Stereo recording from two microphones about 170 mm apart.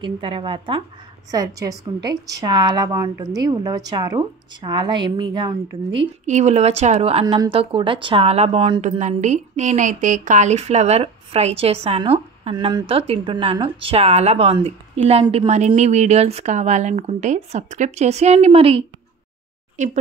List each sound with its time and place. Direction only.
0.0 s a woman's voice: 30° right (ahead or behind)
6.2 s a woman's voice: 45° right (ahead or behind)
8.8 s a woman's voice: 45° right (ahead or behind)